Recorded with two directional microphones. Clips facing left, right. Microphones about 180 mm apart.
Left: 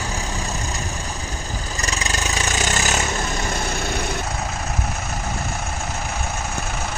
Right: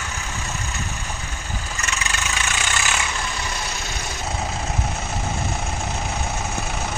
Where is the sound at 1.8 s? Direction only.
35° left (ahead or behind).